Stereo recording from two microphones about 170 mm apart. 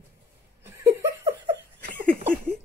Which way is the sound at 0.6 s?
15° right (ahead or behind).